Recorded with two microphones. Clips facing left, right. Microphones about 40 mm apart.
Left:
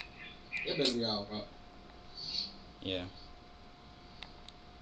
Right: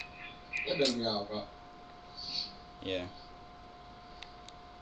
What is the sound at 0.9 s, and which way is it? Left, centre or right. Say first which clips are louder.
Speech: right 1 dB; right.